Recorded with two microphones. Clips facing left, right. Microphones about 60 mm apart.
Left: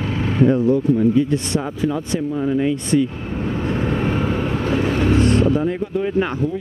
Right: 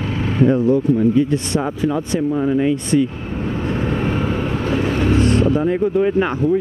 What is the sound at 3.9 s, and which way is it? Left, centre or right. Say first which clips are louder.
Vehicle: even; right.